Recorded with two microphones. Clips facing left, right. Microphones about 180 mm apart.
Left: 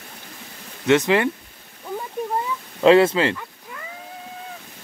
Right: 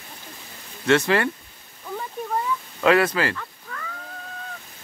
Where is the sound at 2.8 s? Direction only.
25° left (ahead or behind).